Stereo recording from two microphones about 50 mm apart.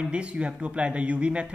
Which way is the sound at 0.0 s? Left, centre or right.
Right.